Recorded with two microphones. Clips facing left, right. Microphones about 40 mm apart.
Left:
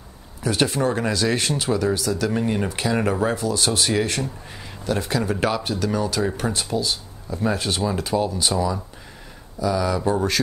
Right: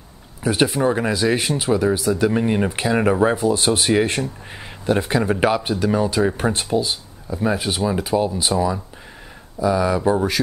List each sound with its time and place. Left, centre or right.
0.4 s speech: centre